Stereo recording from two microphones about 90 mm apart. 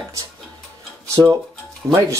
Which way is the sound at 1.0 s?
35° right (ahead or behind).